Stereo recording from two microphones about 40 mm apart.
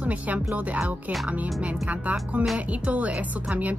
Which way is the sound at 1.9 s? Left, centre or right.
Right.